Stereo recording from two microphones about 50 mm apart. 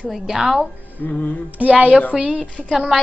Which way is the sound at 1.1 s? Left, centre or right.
Left.